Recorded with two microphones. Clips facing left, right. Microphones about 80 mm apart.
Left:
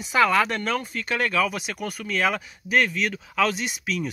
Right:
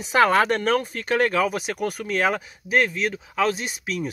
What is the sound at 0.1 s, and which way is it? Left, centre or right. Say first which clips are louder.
Speech: right 2 dB; right.